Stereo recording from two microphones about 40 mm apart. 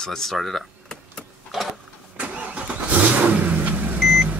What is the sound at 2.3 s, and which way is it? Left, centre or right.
Vehicle, right.